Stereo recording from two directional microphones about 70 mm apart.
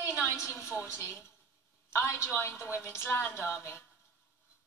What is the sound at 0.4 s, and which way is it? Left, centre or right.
Speech, left.